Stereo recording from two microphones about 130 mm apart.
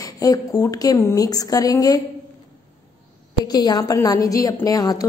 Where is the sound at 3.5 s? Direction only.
30° left (ahead or behind).